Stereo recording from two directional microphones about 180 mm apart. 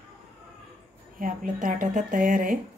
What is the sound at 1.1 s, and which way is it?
A woman's voice, 45° right (ahead or behind).